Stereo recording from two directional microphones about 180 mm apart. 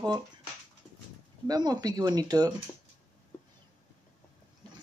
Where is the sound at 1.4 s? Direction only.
20° right (ahead or behind).